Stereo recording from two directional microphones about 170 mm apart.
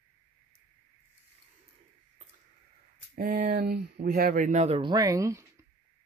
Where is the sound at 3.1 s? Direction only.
55° right (ahead or behind); by 5.4 s 20° right (ahead or behind).